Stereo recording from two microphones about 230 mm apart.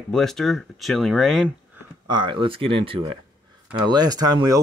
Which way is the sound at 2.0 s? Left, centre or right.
Centre.